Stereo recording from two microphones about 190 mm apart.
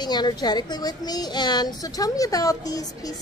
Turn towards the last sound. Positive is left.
turn(degrees=20)  # may be behind; listen again after turning